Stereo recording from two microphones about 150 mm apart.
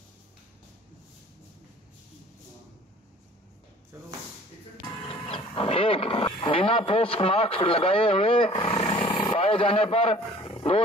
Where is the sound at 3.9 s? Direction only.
15° right (ahead or behind).